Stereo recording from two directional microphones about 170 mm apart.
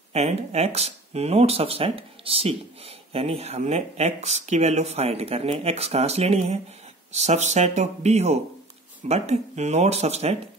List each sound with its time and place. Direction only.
0.1 s speech: 40° right (ahead or behind)